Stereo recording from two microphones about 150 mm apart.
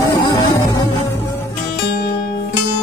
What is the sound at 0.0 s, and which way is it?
Music, 30° left (ahead or behind).